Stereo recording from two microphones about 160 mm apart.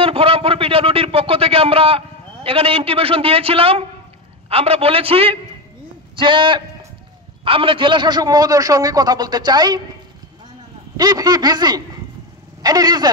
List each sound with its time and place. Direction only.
0.0 s a man's voice: 35° right (ahead or behind)
11.0 s a man's voice: 25° right (ahead or behind)